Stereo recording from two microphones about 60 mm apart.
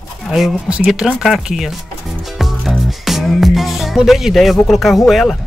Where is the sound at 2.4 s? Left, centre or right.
Centre.